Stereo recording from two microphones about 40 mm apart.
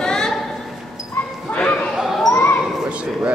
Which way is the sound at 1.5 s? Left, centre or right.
Left.